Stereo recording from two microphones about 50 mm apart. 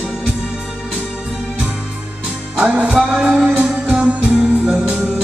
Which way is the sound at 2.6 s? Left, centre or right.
Right.